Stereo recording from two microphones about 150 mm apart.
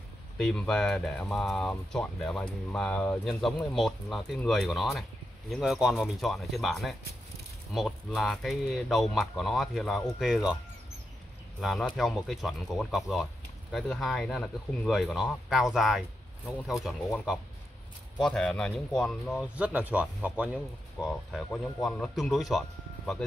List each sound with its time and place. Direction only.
0.4 s speech: 5° left (ahead or behind)
12.0 s speech: centre (ahead or behind)
19.4 s speech: 10° right (ahead or behind)